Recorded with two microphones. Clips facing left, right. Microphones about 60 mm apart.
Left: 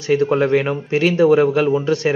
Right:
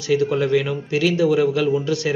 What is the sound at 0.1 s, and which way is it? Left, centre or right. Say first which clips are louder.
Speech: left 3 dB; left.